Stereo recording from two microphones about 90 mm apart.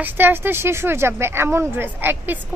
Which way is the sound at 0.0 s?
25° right (ahead or behind).